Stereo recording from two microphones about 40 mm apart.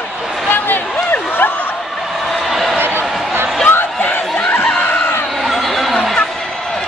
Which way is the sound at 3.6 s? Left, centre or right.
Left.